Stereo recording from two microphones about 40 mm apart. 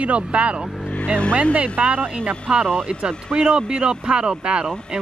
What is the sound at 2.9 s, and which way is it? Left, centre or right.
Speech, right.